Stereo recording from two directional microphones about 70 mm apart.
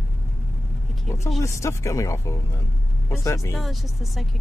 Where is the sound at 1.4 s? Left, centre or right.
Left.